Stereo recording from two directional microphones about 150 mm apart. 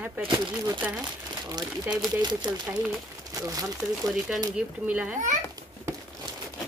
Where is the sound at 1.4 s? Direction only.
30° right (ahead or behind).